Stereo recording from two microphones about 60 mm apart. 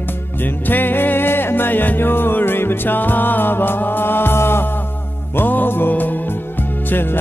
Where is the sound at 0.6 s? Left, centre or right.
Left.